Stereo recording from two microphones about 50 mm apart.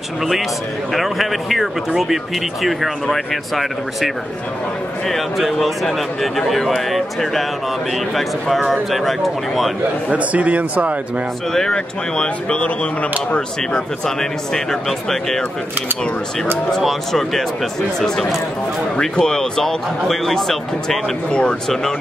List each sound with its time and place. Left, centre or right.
0.9 s a man's voice: centre
10.0 s a man's voice: right
11.5 s speech: centre
13.3 s speech: centre
17.1 s a man's voice: centre
18.9 s speech: centre
21.3 s speech: centre